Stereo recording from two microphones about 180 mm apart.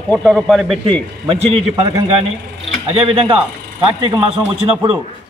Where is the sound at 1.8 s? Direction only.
35° right (ahead or behind).